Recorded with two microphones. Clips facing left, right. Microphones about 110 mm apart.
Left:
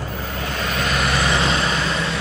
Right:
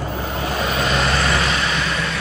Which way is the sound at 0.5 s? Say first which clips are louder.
Right 2 dB; 10° right (ahead or behind).